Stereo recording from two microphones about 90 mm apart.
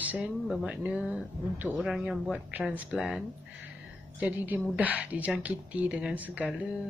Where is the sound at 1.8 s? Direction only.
5° right (ahead or behind).